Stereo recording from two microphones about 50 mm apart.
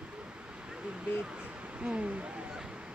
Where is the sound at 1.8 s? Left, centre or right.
Right.